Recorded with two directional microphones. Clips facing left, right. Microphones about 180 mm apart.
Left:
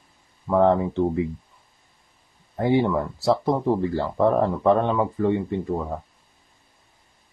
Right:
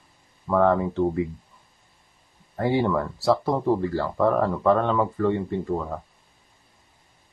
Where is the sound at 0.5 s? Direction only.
20° left (ahead or behind).